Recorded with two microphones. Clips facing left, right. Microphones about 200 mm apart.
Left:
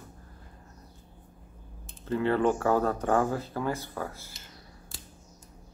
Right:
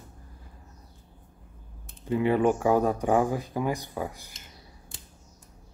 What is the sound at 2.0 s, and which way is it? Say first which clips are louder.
Speech: right 2 dB; 15° right (ahead or behind).